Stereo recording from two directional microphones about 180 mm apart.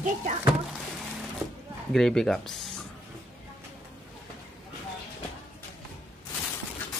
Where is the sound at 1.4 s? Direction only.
20° right (ahead or behind).